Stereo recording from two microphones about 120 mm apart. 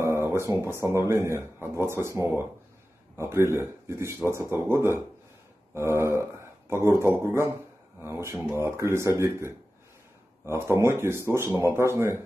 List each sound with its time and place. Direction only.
0.0 s speech: 20° right (ahead or behind)